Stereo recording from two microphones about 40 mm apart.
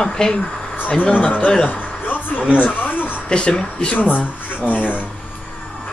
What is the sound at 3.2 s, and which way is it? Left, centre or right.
Speech, left.